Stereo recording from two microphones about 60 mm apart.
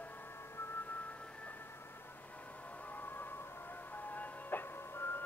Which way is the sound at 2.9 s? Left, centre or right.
Left.